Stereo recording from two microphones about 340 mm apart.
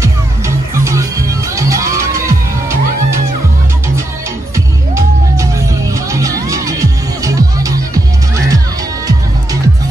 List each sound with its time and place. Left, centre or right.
0.8 s music: centre
5.9 s music: centre